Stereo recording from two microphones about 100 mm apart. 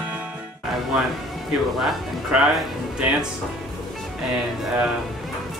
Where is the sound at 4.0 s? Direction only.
5° right (ahead or behind).